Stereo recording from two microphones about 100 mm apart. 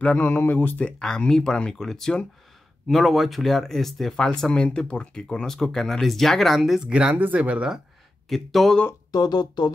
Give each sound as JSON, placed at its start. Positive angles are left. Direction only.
{"t": 0.0, "sound": "speech", "side_deg": 15}
{"t": 8.3, "sound": "speech", "side_deg": 0}
{"t": 9.1, "sound": "speech", "side_deg": 45}